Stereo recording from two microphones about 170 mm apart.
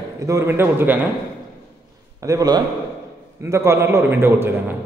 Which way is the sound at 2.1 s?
20° right (ahead or behind).